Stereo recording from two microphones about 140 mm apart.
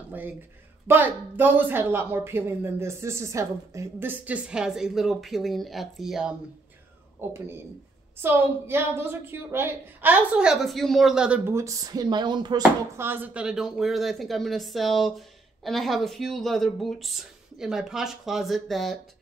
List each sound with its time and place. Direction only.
0.8 s a woman's voice: 15° right (ahead or behind)
7.2 s a woman's voice: 20° right (ahead or behind)
11.5 s speech: 25° right (ahead or behind)
12.9 s speech: 15° right (ahead or behind); by 18.9 s centre (ahead or behind)